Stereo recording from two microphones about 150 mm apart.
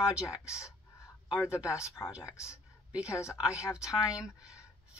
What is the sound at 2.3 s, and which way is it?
Speech, 20° left (ahead or behind).